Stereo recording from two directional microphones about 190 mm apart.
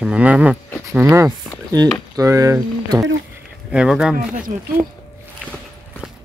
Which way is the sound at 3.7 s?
5° right (ahead or behind).